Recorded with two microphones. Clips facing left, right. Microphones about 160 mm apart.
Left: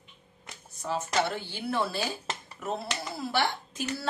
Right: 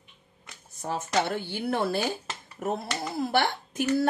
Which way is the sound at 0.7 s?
50° right (ahead or behind).